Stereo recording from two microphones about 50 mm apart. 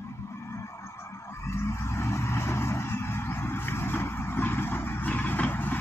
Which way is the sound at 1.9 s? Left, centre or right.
Left.